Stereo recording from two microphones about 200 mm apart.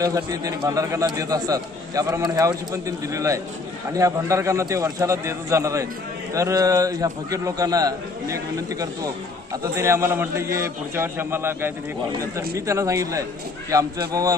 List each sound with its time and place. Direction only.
0.0 s a man's voice: 15° right (ahead or behind)